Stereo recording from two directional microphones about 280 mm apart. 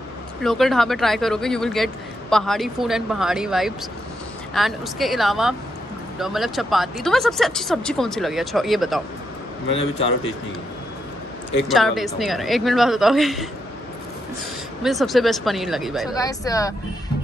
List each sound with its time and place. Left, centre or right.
0.4 s speech: centre
9.7 s a man's voice: centre
11.6 s speech: centre
14.8 s speech: centre
16.2 s speech: centre